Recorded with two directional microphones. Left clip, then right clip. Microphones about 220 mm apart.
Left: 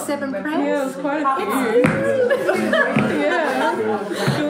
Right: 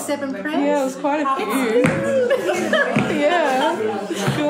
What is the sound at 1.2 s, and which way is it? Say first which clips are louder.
A woman's voice: left 1 dB; centre (ahead or behind).